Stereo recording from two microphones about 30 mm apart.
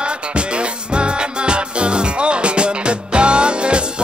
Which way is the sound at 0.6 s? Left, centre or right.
Right.